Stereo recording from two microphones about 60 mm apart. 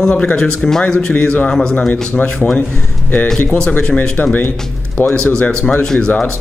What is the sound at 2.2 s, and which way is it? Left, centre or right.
Speech, left.